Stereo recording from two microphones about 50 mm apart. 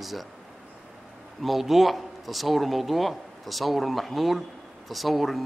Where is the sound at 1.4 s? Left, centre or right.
Centre.